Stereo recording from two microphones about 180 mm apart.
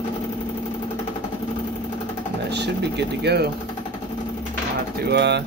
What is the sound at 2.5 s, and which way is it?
Speech, 70° right (ahead or behind).